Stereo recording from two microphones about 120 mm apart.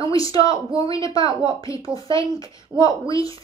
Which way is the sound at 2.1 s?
30° left (ahead or behind).